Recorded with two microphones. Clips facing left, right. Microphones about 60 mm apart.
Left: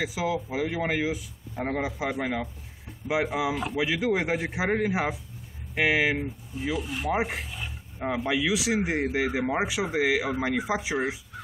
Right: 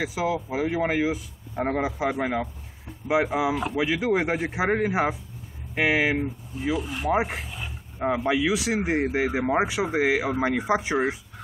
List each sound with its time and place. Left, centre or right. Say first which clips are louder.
0.0 s speech: right 2 dB; centre
0.6 s a man's voice: right 5 dB; centre
4.7 s a man's voice: right 3 dB; centre
8.5 s a man's voice: right 2 dB; centre
9.7 s speech: right 2 dB; centre